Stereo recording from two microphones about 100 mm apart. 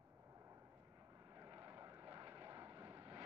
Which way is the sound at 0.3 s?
30° right (ahead or behind).